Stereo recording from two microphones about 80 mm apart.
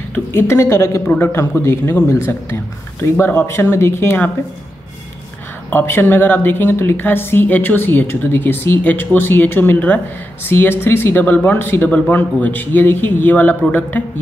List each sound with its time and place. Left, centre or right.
0.3 s a woman's voice: left
5.7 s a woman's voice: left